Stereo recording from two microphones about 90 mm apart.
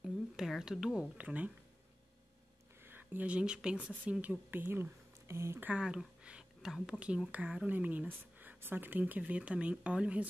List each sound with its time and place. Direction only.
0.0 s speech: 5° right (ahead or behind)
2.8 s speech: 25° right (ahead or behind)
5.7 s speech: 10° right (ahead or behind)